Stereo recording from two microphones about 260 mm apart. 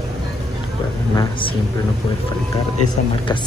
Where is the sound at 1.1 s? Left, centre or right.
Centre.